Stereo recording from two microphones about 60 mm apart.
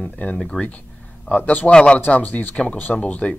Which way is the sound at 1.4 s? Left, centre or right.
Left.